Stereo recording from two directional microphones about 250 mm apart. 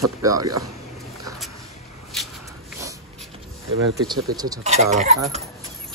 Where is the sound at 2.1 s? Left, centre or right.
Centre.